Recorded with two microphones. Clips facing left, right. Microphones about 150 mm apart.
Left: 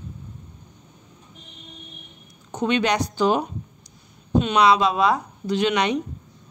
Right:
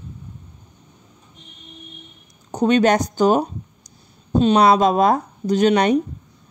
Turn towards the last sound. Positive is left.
turn(degrees=-45)  # may be behind; listen again after turning